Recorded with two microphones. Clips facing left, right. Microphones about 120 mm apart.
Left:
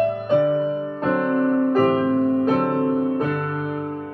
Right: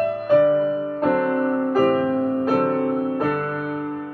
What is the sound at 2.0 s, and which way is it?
Music, 40° right (ahead or behind).